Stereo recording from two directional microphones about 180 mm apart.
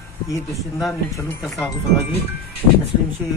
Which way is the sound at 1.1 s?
15° left (ahead or behind).